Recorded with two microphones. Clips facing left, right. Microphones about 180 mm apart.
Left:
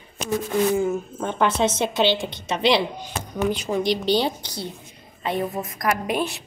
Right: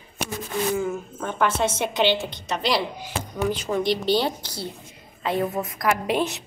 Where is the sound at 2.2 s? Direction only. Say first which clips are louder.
Left 5 dB; centre (ahead or behind).